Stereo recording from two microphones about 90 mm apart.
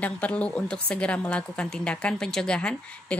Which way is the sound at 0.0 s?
15° left (ahead or behind).